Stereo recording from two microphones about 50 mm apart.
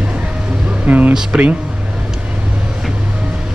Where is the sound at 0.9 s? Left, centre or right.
Right.